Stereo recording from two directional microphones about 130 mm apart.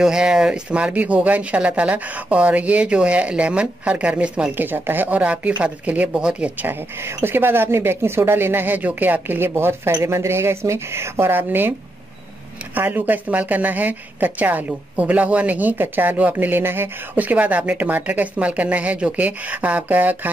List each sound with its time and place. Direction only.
0.0 s a woman's voice: 5° right (ahead or behind)
12.7 s a woman's voice: 15° right (ahead or behind)